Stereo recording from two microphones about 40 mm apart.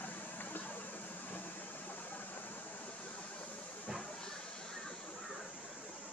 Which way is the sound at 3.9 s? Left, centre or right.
Centre.